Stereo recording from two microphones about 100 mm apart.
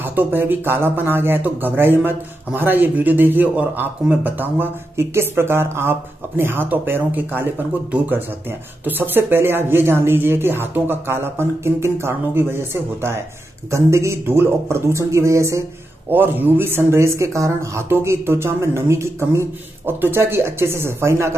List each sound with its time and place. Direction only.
0.0 s speech: 20° right (ahead or behind)
16.1 s speech: 20° right (ahead or behind)